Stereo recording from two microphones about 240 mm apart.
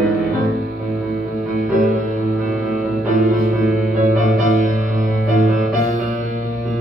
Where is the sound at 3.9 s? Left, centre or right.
Right.